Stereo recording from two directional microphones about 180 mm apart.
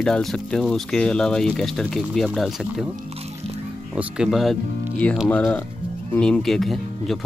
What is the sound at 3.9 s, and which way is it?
Speech, centre (ahead or behind).